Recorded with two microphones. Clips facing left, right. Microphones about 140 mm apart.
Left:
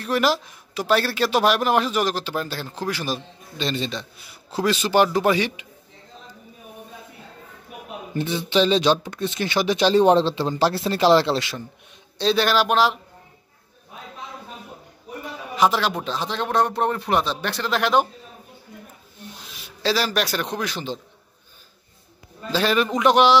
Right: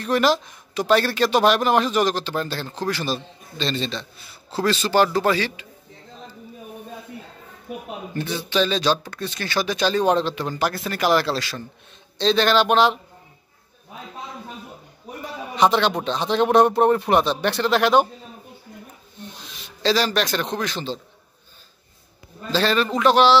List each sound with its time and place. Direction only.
0.0 s speech: 5° left (ahead or behind)
8.1 s speech: 20° left (ahead or behind)
12.2 s speech: 10° left (ahead or behind)
15.5 s speech: 5° left (ahead or behind)
16.3 s speech: 20° right (ahead or behind)
16.7 s speech: 5° right (ahead or behind)
19.5 s speech: 5° left (ahead or behind)
22.5 s speech: 10° left (ahead or behind)